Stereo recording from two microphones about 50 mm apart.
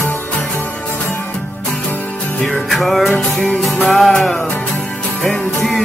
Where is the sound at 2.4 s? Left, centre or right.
Centre.